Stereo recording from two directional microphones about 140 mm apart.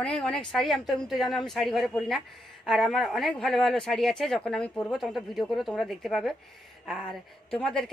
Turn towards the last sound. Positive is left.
turn(degrees=5)  # may be behind; listen again after turning